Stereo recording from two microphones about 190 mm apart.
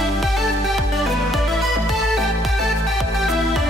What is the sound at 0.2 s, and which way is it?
Music, centre (ahead or behind).